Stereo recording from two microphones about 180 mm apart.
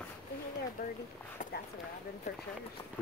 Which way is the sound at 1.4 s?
45° left (ahead or behind).